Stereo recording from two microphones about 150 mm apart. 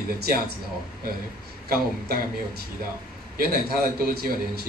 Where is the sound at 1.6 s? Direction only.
80° right.